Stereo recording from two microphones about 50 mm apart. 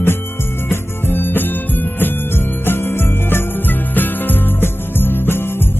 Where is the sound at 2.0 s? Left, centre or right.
Left.